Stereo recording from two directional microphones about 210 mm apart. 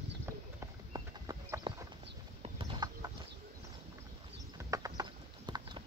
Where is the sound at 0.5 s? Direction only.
15° right (ahead or behind).